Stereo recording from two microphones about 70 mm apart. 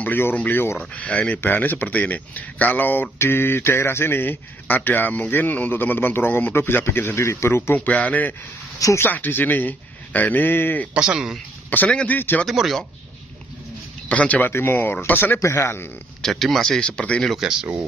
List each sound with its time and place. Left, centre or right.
0.0 s a man's voice: left
8.7 s speech: left
9.0 s speech: left
10.9 s speech: centre
11.9 s speech: centre
12.2 s speech: left
12.4 s speech: centre
14.0 s speech: left
14.5 s a man's voice: left
15.4 s a man's voice: left
16.2 s speech: centre
17.4 s speech: centre